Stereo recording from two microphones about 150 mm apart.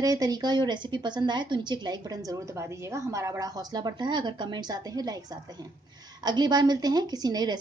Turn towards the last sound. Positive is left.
turn(degrees=-30)  # may be behind; listen again after turning